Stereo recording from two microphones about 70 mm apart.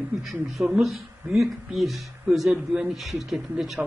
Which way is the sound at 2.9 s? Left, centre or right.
Centre.